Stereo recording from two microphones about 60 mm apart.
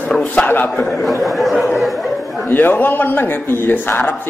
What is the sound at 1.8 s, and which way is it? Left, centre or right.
Chatter, centre.